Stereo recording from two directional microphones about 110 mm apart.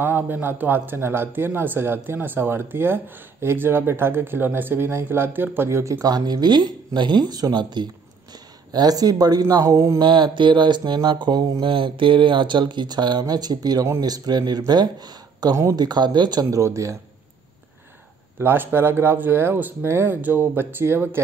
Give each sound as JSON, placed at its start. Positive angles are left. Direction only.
{"t": 0.0, "sound": "speech", "side_deg": -20}
{"t": 6.0, "sound": "speech", "side_deg": -35}
{"t": 10.0, "sound": "speech", "side_deg": -45}
{"t": 11.7, "sound": "speech", "side_deg": -50}
{"t": 18.4, "sound": "speech", "side_deg": -20}